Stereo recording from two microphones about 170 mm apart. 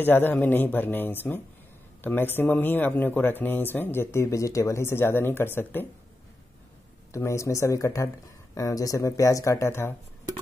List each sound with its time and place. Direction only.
0.0 s speech: 10° left (ahead or behind)
7.1 s speech: 15° left (ahead or behind)